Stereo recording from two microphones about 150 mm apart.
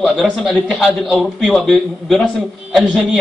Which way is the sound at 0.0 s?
Centre (ahead or behind).